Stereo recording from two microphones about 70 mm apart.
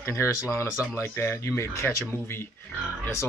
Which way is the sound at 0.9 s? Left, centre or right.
Left.